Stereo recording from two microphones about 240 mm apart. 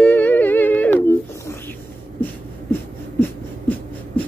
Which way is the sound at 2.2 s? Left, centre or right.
Centre.